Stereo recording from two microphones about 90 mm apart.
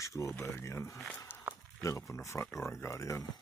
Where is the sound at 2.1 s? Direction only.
35° left (ahead or behind).